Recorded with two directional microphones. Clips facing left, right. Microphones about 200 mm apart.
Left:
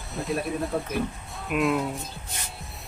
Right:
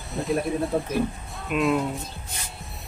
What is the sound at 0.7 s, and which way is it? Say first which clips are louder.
Speech: right 3 dB; 25° right (ahead or behind).